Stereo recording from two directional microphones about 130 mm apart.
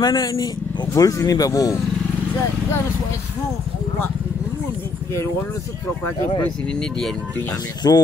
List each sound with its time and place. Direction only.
0.0 s speech: 30° left (ahead or behind)
6.7 s speech: 5° left (ahead or behind)
7.8 s speech: 30° left (ahead or behind)